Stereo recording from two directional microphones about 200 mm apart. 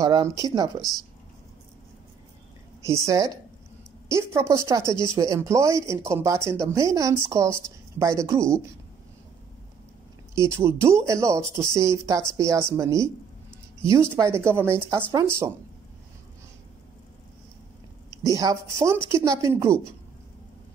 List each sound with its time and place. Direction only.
0.0 s speech: 15° right (ahead or behind)
2.9 s speech: 15° right (ahead or behind)
10.5 s speech: 15° right (ahead or behind)
14.1 s speech: 10° right (ahead or behind)
18.2 s speech: 15° right (ahead or behind)